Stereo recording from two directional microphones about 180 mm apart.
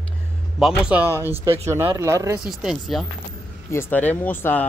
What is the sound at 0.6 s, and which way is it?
Speech, 5° right (ahead or behind).